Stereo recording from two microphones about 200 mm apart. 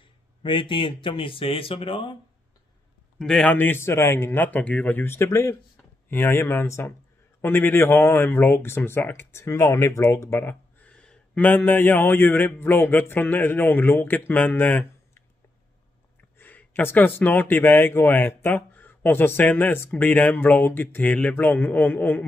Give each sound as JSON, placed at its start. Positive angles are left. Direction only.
{"t": 0.4, "sound": "speech", "side_deg": 25}
{"t": 3.2, "sound": "speech", "side_deg": 5}
{"t": 16.3, "sound": "speech", "side_deg": 10}